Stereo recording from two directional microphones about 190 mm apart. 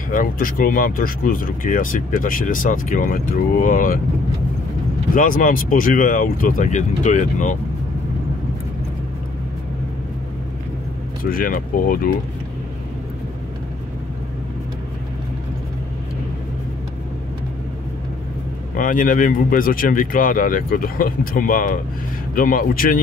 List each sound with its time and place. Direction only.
0.1 s speech: 45° left (ahead or behind)
5.1 s speech: 45° left (ahead or behind)
11.2 s speech: 50° left (ahead or behind)
18.8 s speech: 45° left (ahead or behind)